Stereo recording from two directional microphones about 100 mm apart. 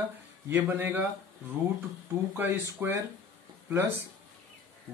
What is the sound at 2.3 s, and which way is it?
Speech, 25° right (ahead or behind).